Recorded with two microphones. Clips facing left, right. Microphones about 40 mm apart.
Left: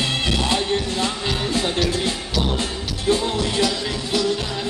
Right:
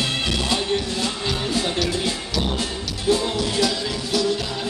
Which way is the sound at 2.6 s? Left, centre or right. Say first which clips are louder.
Left 1 dB; left.